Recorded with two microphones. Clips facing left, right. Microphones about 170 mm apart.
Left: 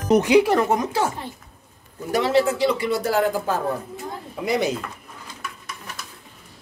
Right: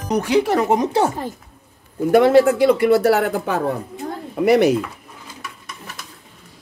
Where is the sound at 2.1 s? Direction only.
50° right (ahead or behind).